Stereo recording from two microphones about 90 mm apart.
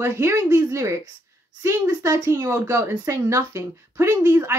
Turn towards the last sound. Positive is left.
turn(degrees=-30)  # may be behind; listen again after turning